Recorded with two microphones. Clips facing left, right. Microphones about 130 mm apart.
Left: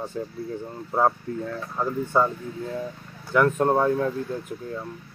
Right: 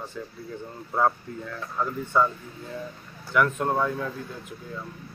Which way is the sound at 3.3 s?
40° left (ahead or behind).